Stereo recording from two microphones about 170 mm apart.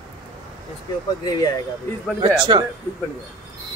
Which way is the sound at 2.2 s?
25° right (ahead or behind).